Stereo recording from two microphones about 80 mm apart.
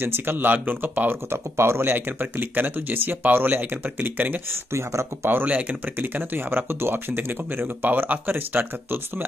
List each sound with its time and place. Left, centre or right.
0.0 s speech: right
4.7 s speech: right
5.4 s speech: centre